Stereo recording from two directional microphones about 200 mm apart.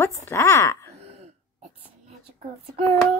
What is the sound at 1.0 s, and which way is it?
Throat clearing, 30° right (ahead or behind).